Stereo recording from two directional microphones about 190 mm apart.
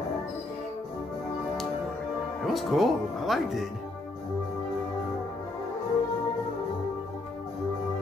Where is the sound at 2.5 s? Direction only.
Centre (ahead or behind).